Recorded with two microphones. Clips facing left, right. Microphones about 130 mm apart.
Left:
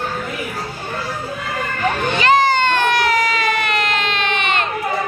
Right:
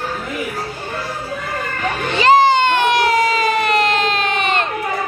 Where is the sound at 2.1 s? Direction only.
30° right (ahead or behind).